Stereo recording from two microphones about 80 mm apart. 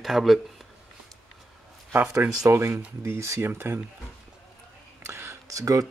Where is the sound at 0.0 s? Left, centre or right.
Centre.